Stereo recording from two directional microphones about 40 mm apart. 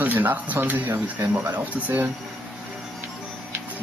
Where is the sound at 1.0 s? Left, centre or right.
Right.